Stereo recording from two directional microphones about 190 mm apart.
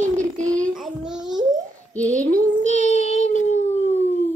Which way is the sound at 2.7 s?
35° left (ahead or behind).